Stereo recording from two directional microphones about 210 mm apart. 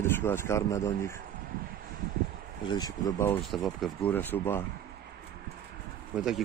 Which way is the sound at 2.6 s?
20° left (ahead or behind).